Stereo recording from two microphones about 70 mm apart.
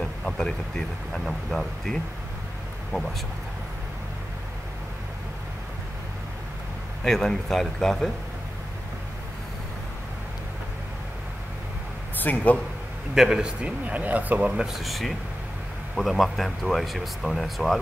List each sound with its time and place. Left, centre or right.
0.0 s a sound: centre
1.1 s speech: centre
7.1 s speech: centre
12.2 s a man's voice: left
13.1 s speech: centre; by 14.5 s right
14.6 s speech: centre